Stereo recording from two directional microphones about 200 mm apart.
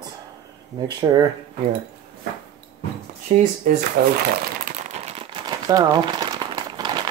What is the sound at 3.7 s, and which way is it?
Speech, 40° right (ahead or behind).